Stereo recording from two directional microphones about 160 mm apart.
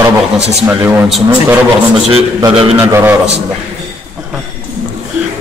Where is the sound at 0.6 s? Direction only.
15° right (ahead or behind).